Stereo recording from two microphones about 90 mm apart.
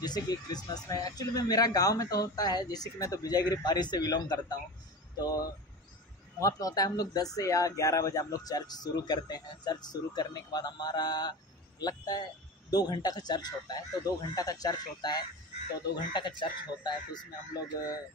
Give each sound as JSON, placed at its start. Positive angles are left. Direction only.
{"t": 0.0, "sound": "speech", "side_deg": 50}